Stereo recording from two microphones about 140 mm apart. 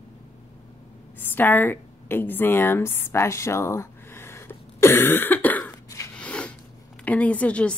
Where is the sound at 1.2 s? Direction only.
15° left (ahead or behind).